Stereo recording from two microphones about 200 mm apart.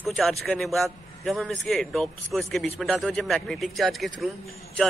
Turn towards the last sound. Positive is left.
turn(degrees=0)  # may be behind; listen again after turning